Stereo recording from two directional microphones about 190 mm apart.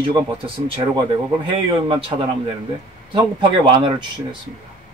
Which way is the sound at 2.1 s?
25° right (ahead or behind).